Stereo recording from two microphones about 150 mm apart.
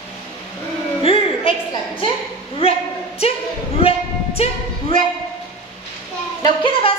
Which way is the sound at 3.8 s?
40° left (ahead or behind).